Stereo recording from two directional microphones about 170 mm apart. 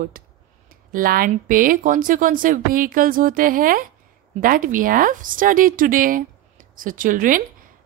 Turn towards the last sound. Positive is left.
turn(degrees=-50)  # may be behind; listen again after turning